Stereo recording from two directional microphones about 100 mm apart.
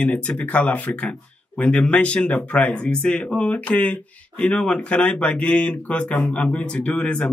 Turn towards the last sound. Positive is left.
turn(degrees=10)  # may be behind; listen again after turning